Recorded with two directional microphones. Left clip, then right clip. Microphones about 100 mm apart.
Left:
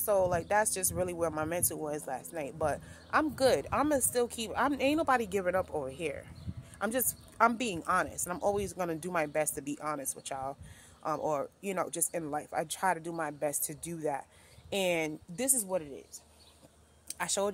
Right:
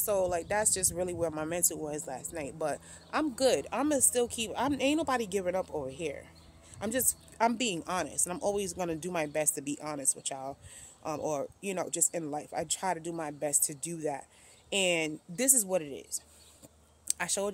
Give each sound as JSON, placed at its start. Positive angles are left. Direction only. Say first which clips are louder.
{"t": 0.0, "sound": "speech", "louder": "left 1 dB", "side_deg": -35}
{"t": 11.7, "sound": "speech", "louder": "right 1 dB", "side_deg": -25}
{"t": 15.3, "sound": "speech", "louder": "right 4 dB", "side_deg": -85}